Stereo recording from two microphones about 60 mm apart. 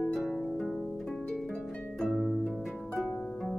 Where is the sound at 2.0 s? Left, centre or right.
Centre.